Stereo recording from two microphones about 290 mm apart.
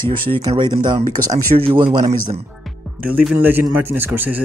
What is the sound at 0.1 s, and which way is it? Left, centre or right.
Speech, centre.